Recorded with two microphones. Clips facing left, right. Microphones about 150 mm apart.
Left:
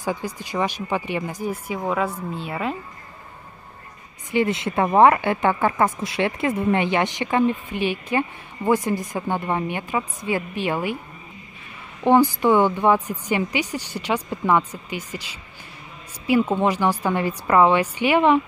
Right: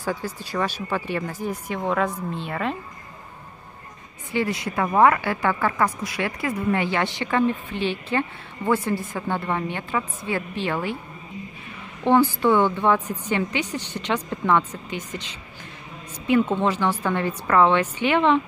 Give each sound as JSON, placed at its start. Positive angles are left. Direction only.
{"t": 0.0, "sound": "a woman's voice", "side_deg": 15}
{"t": 4.3, "sound": "a woman's voice", "side_deg": 20}
{"t": 12.0, "sound": "a woman's voice", "side_deg": 15}